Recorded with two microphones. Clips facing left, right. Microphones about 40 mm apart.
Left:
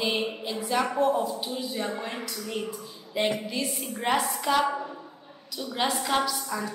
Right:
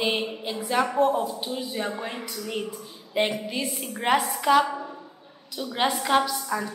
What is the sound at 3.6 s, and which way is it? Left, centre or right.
A woman's voice, centre.